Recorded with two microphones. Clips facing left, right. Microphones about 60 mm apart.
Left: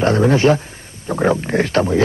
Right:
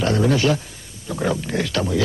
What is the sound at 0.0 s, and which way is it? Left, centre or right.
Speech, left.